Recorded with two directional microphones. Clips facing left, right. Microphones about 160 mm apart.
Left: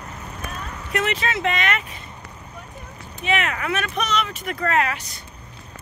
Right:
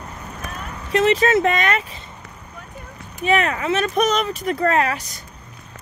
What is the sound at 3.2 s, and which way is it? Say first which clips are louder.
Speech: right 5 dB; 40° right (ahead or behind).